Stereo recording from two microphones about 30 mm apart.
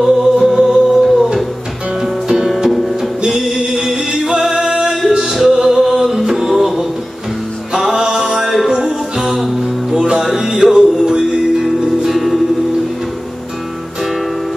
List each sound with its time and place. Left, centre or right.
0.0 s music: centre
5.2 s music: centre
7.9 s music: centre
11.1 s music: right
12.0 s music: centre